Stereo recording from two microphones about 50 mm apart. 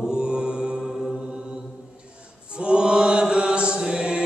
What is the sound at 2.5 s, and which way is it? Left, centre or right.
Mantra, right.